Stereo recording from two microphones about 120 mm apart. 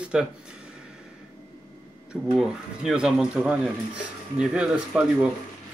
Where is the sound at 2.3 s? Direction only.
5° right (ahead or behind).